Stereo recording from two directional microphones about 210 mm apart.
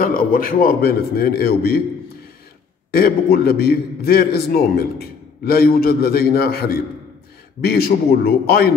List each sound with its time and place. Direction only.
0.0 s a man's voice: 40° left (ahead or behind)
2.9 s a man's voice: 45° left (ahead or behind)